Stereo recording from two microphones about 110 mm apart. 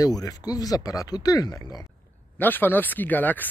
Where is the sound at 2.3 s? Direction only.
15° left (ahead or behind).